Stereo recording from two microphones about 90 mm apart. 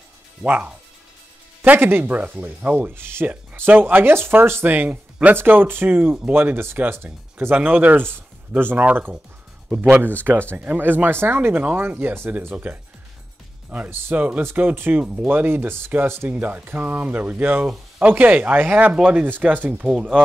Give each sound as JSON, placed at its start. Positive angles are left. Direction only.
{"t": 0.4, "sound": "speech", "side_deg": -15}
{"t": 10.5, "sound": "speech", "side_deg": -20}
{"t": 19.9, "sound": "speech", "side_deg": -5}